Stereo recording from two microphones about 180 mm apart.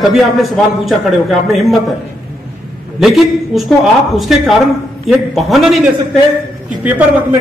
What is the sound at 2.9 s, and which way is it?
A man's voice, centre (ahead or behind).